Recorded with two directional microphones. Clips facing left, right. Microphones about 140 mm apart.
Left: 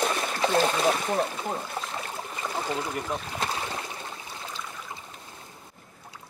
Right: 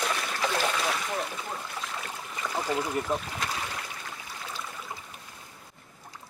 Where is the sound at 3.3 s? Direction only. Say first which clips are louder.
Left 3 dB; 25° left (ahead or behind).